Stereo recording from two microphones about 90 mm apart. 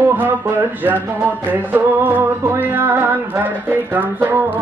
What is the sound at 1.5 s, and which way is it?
Music, 20° right (ahead or behind).